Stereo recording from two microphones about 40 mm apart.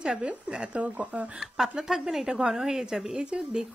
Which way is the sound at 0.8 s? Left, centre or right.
Right.